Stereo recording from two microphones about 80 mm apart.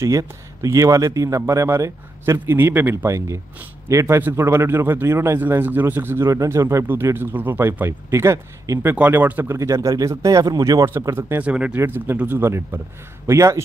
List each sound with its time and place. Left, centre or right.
0.0 s a man's voice: right
5.4 s a man's voice: right
8.9 s speech: right
9.6 s speech: right
11.1 s speech: right
11.4 s speech: centre
11.8 s a man's voice: right